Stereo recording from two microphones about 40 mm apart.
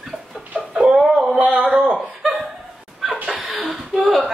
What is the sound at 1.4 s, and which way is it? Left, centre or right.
Speech, right.